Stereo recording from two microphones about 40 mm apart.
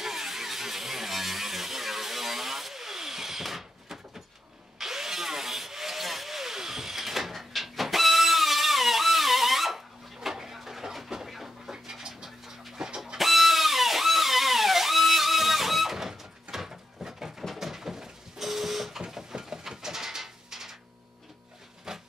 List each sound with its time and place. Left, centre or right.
0.0 s a sound: centre
11.7 s bird: centre
12.7 s chicken: centre
13.2 s music: centre
17.6 s printer: centre
21.9 s wood: centre